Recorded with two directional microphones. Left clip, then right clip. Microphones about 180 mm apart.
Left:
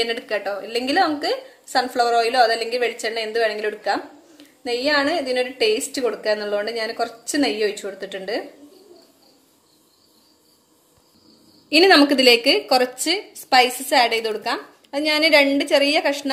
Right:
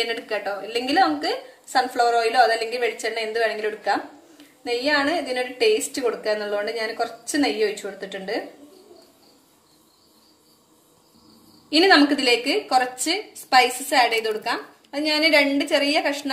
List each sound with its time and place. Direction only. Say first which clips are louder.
0.0 s a woman's voice: left 2 dB; 50° left (ahead or behind)
11.7 s a woman's voice: left 3 dB; 45° left (ahead or behind)